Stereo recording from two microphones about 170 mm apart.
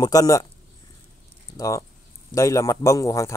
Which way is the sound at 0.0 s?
20° left (ahead or behind).